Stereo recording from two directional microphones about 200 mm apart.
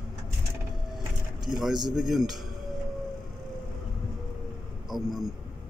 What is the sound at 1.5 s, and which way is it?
Speech, centre (ahead or behind).